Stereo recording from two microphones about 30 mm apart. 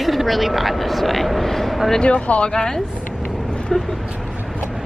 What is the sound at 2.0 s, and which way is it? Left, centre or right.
Speech, left.